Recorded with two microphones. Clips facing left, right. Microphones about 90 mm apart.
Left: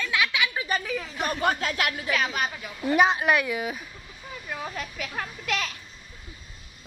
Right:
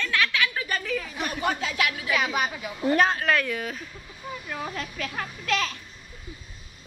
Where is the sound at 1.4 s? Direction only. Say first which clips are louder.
Even; 55° left (ahead or behind).